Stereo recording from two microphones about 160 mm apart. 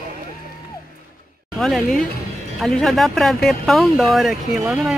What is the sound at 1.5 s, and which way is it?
Speech, centre (ahead or behind).